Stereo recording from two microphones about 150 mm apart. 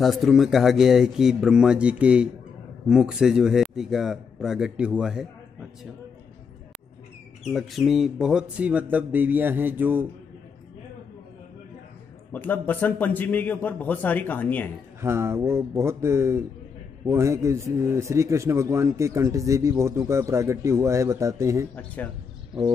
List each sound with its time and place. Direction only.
0.0 s speech: centre (ahead or behind)
7.4 s a sound: centre (ahead or behind)
12.3 s a man's voice: 10° left (ahead or behind)
15.0 s a sound: 15° right (ahead or behind)
17.0 s a man's voice: 20° right (ahead or behind)
21.7 s a man's voice: 10° left (ahead or behind)